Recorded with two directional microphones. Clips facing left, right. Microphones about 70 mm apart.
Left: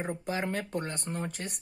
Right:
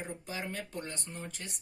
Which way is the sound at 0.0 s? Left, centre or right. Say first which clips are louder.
Left 7 dB; left.